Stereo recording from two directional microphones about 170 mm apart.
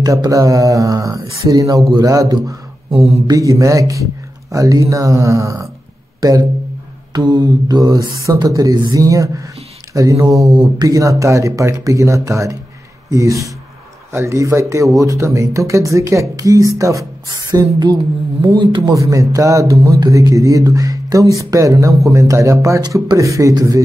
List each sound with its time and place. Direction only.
0.0 s speech: 20° right (ahead or behind)
18.4 s speech: 25° right (ahead or behind)